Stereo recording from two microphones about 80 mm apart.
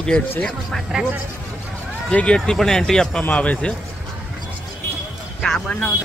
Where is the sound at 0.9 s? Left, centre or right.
Centre.